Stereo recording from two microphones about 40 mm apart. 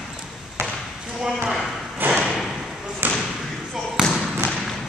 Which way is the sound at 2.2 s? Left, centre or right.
Centre.